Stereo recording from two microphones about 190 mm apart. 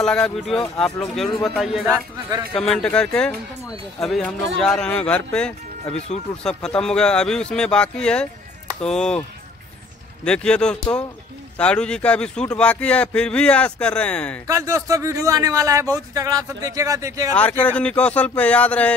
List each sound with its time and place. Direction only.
0.0 s speech: 5° left (ahead or behind)
5.9 s speech: 35° left (ahead or behind)
6.4 s speech: 5° left (ahead or behind)
10.2 s speech: 5° left (ahead or behind)
14.5 s a man's voice: 15° right (ahead or behind)
17.3 s speech: 10° left (ahead or behind)